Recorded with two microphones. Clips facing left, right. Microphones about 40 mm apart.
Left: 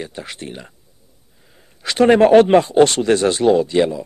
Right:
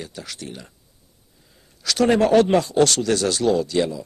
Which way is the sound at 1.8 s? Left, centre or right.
Left.